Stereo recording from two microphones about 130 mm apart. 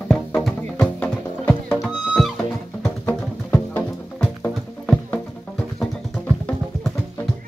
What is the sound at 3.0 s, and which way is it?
Music, 15° left (ahead or behind).